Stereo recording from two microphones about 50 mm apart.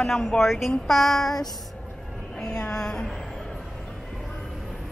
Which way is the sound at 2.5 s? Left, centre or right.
Centre.